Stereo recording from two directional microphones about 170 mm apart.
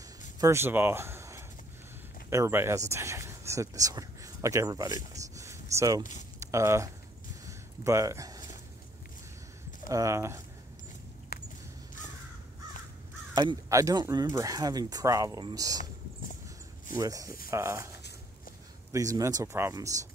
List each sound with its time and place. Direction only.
0.4 s speech: 15° right (ahead or behind)
7.4 s a sound: 20° right (ahead or behind)
9.8 s speech: 20° right (ahead or behind)
11.3 s a sound: 65° left (ahead or behind)
13.3 s speech: 20° right (ahead or behind)
16.9 s speech: 20° right (ahead or behind)